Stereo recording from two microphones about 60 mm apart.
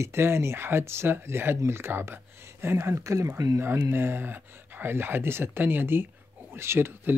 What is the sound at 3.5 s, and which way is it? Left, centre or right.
Speech, right.